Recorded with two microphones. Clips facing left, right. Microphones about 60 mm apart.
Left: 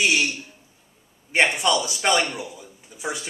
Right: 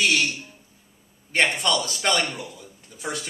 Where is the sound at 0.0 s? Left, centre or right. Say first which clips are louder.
Left 1 dB; centre.